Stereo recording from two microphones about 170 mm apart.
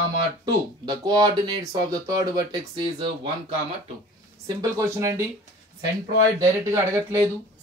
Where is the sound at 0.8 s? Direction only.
25° right (ahead or behind).